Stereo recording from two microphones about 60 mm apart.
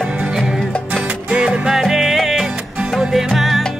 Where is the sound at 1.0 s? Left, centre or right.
Centre.